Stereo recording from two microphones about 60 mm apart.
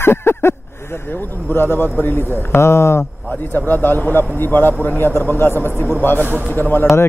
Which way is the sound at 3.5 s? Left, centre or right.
Left.